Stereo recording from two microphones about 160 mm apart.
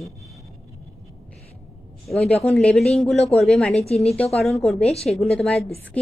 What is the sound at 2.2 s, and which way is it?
A woman's voice, centre (ahead or behind).